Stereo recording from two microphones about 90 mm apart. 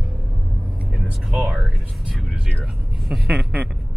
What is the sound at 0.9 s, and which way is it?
Speech, 10° right (ahead or behind).